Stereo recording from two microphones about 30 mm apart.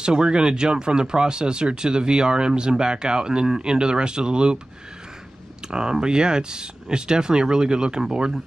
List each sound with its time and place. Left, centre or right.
0.0 s speech: right
5.7 s speech: right